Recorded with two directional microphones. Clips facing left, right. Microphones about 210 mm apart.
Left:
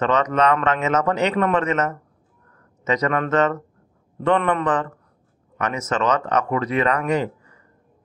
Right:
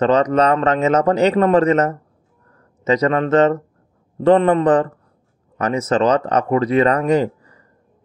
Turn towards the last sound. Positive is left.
turn(degrees=-35)  # may be behind; listen again after turning